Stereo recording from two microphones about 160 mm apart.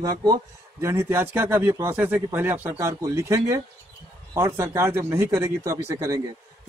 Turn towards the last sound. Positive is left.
turn(degrees=-20)  # may be behind; listen again after turning